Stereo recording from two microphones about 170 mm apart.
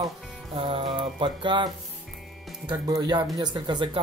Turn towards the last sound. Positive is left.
turn(degrees=-25)  # may be behind; listen again after turning